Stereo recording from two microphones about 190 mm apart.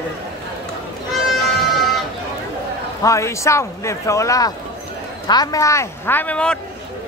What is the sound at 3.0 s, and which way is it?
Speech, 15° left (ahead or behind).